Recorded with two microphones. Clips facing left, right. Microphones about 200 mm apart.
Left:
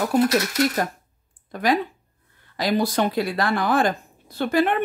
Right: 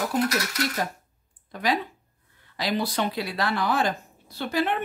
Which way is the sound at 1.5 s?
50° left (ahead or behind).